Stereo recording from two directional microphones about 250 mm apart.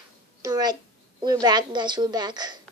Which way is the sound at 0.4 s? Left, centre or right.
Centre.